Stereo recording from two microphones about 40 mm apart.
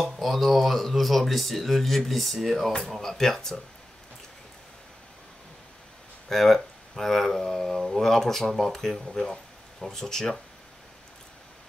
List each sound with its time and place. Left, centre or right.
0.0 s speech: centre
6.2 s speech: centre